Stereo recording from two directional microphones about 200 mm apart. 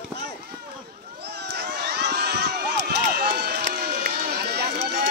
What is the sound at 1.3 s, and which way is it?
Crowd, 55° right (ahead or behind).